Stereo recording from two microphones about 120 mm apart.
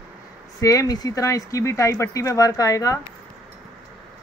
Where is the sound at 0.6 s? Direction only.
30° left (ahead or behind).